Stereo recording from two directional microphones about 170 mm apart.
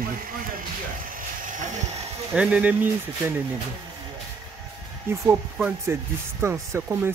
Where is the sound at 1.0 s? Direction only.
55° right (ahead or behind).